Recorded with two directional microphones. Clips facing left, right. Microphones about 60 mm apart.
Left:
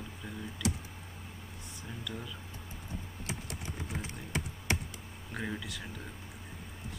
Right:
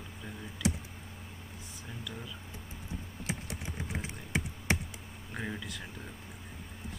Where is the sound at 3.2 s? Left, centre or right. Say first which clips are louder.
Right 3 dB; right.